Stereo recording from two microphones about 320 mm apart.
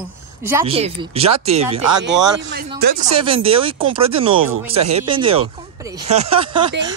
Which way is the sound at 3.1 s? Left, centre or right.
Centre.